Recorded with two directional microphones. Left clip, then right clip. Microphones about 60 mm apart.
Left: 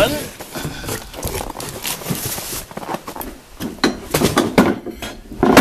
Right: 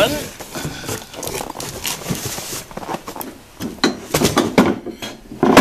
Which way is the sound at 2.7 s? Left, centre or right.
Centre.